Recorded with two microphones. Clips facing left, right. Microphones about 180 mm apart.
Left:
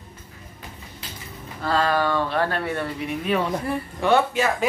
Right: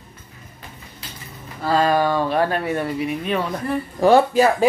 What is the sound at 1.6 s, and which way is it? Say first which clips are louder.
Speech: right 4 dB; 10° right (ahead or behind).